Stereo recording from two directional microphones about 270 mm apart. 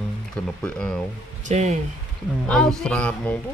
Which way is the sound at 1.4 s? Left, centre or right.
Right.